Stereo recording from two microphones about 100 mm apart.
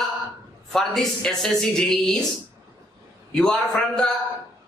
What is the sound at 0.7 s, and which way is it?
A man's voice, 5° left (ahead or behind).